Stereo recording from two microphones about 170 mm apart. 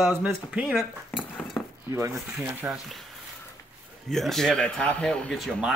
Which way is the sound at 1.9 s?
20° right (ahead or behind).